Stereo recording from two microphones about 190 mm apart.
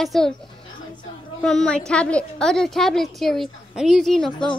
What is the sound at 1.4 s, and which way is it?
A woman's voice, 5° left (ahead or behind).